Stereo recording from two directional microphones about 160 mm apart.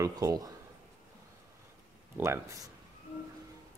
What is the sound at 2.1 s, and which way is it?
Speech, 15° right (ahead or behind).